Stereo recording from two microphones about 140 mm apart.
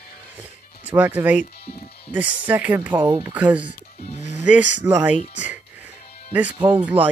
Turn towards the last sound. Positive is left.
turn(degrees=-10)  # may be behind; listen again after turning